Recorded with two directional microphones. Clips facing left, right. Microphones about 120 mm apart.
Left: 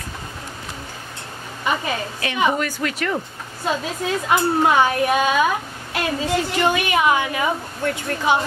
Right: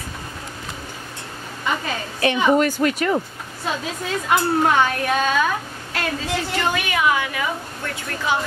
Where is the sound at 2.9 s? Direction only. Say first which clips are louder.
Right 3 dB; 15° right (ahead or behind).